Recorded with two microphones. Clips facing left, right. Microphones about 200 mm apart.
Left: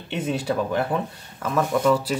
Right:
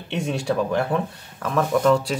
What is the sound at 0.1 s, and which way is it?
Speech, 5° left (ahead or behind).